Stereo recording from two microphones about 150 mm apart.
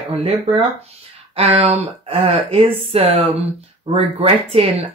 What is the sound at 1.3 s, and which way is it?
Speech, 40° right (ahead or behind).